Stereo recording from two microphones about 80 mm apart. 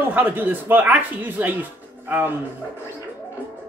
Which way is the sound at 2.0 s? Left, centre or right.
Right.